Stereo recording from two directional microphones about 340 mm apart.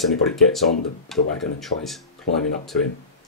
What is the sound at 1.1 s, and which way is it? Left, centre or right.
Speech, centre.